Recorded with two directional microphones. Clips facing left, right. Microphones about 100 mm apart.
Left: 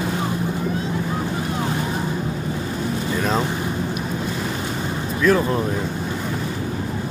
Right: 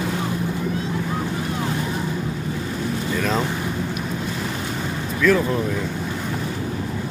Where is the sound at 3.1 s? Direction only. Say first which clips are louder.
Left 1 dB; 25° left (ahead or behind).